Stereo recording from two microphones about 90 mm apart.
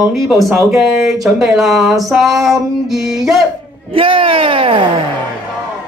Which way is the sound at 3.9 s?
80° right.